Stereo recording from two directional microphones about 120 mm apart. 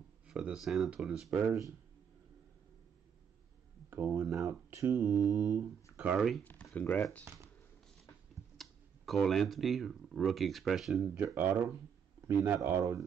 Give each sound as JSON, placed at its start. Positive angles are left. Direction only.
{"t": 0.3, "sound": "speech", "side_deg": -5}
{"t": 3.9, "sound": "speech", "side_deg": -15}
{"t": 5.0, "sound": "mantra", "side_deg": -20}
{"t": 5.9, "sound": "speech", "side_deg": -5}
{"t": 6.4, "sound": "speech", "side_deg": 15}
{"t": 8.5, "sound": "speech", "side_deg": 0}
{"t": 11.3, "sound": "mantra", "side_deg": -15}
{"t": 12.3, "sound": "speech", "side_deg": -15}